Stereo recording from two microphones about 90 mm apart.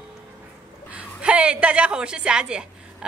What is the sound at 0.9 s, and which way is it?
A woman's voice, 10° right (ahead or behind).